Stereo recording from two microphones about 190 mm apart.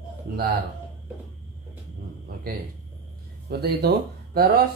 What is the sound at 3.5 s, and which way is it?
Speech, 60° right (ahead or behind).